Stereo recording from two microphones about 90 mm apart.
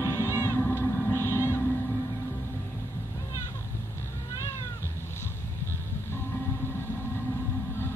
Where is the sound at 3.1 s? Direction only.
35° left (ahead or behind).